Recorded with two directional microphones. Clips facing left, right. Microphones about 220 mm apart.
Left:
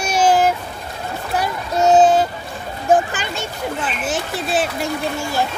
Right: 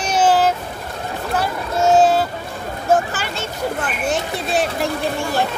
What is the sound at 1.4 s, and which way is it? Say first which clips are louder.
Boat: left 1 dB; 15° left (ahead or behind).